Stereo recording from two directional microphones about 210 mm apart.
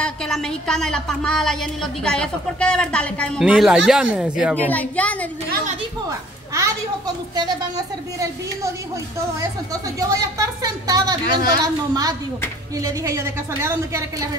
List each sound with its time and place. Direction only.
0.0 s a woman's voice: 5° left (ahead or behind)
4.6 s a woman's voice: 5° left (ahead or behind)
6.0 s a child's voice: 15° right (ahead or behind)
9.7 s speech: 15° right (ahead or behind)